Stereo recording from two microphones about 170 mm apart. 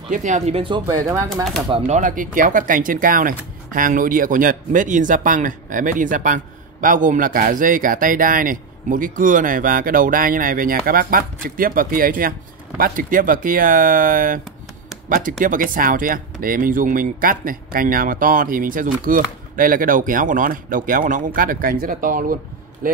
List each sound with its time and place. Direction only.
0.1 s speech: 45° right (ahead or behind)
0.6 s speech: 30° right (ahead or behind)
1.3 s speech: centre (ahead or behind)
1.8 s speech: 45° right (ahead or behind)